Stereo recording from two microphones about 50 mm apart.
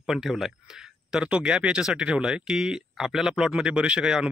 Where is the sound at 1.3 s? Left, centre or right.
Right.